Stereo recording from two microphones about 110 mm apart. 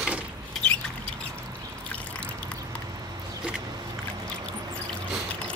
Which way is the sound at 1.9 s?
10° left (ahead or behind).